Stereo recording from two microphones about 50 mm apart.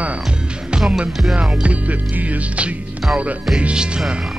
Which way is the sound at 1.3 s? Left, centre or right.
Right.